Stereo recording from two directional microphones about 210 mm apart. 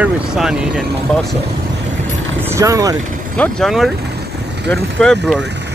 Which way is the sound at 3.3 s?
5° left (ahead or behind).